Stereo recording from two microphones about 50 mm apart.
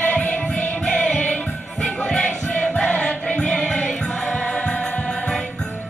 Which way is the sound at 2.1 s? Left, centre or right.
Centre.